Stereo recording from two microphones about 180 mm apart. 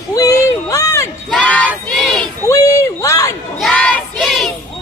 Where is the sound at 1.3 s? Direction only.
5° left (ahead or behind).